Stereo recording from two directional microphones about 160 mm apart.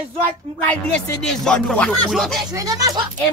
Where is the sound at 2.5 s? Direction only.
20° right (ahead or behind).